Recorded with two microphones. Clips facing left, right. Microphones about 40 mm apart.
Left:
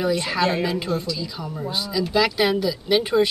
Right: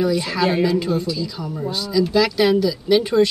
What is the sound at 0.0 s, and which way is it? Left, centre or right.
Speech, centre.